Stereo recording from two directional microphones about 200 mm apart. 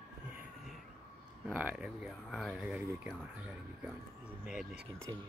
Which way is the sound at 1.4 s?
5° right (ahead or behind).